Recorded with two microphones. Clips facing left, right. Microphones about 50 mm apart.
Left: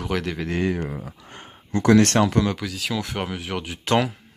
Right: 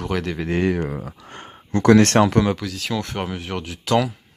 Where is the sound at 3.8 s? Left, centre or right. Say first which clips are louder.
Right 1 dB; left.